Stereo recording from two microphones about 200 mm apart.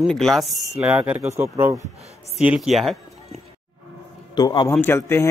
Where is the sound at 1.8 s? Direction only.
30° right (ahead or behind).